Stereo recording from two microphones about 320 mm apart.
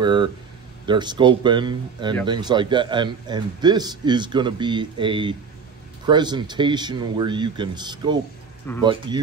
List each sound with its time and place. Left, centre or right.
0.0 s a man's voice: centre